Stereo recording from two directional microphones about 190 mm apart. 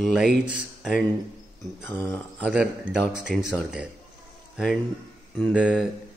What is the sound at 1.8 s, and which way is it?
Speech, 10° left (ahead or behind).